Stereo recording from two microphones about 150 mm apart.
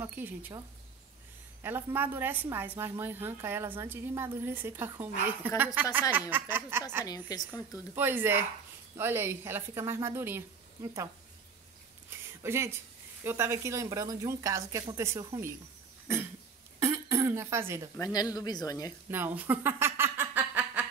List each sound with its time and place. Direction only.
0.0 s a woman's voice: 15° right (ahead or behind)
7.1 s speech: 25° left (ahead or behind)
7.9 s a woman's voice: 15° right (ahead or behind)
12.3 s a sound: 15° right (ahead or behind)
13.2 s a woman's voice: 15° right (ahead or behind)
16.8 s cough: 15° right (ahead or behind)
17.9 s speech: 25° left (ahead or behind)
19.0 s a sound: 15° right (ahead or behind)